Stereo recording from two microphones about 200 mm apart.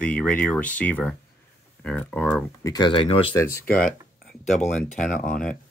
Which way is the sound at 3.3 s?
15° left (ahead or behind).